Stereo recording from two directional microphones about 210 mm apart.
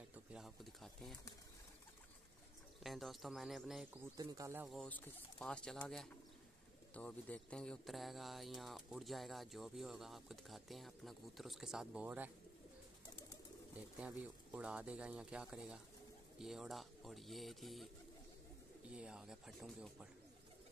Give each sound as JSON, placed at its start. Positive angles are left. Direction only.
{"t": 0.1, "sound": "speech", "side_deg": -5}
{"t": 2.8, "sound": "speech", "side_deg": 0}
{"t": 4.2, "sound": "speech", "side_deg": -15}
{"t": 4.6, "sound": "speech", "side_deg": 5}
{"t": 13.7, "sound": "speech", "side_deg": -5}
{"t": 18.9, "sound": "speech", "side_deg": -5}